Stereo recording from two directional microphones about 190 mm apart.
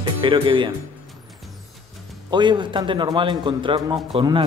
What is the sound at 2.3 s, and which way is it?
A man's voice, 25° right (ahead or behind).